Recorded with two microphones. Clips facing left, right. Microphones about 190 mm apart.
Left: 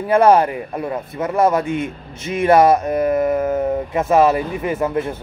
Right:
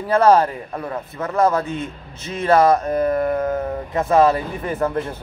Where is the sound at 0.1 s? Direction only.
15° left (ahead or behind).